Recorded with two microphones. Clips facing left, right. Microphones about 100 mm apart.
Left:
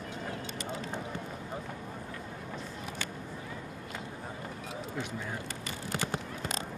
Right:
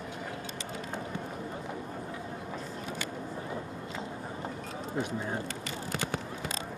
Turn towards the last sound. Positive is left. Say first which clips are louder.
# right 4 dB
turn(degrees=-30)  # may be behind; listen again after turning